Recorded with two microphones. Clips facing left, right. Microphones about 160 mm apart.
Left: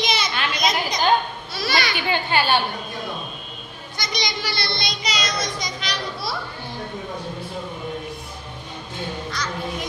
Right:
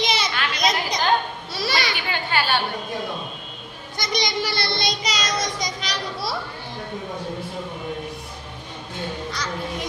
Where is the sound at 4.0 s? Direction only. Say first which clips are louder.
Right 3 dB; 50° right (ahead or behind).